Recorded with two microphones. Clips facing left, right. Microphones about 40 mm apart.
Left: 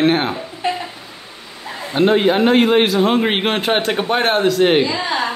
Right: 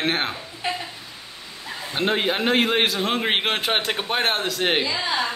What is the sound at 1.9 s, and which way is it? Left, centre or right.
A man's voice, centre.